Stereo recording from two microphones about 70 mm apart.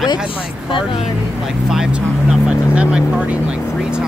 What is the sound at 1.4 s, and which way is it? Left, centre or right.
Speech, centre.